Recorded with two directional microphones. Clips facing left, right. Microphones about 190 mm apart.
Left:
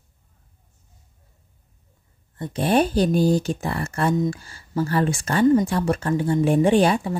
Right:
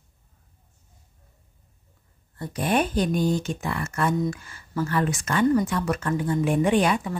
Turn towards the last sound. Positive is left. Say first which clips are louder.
# left 4 dB
turn(degrees=30)  # may be behind; listen again after turning